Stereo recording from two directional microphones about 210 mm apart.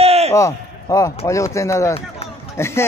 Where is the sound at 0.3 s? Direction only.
15° left (ahead or behind).